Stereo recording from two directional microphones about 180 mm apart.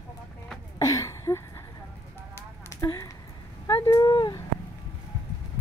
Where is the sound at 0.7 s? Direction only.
20° left (ahead or behind).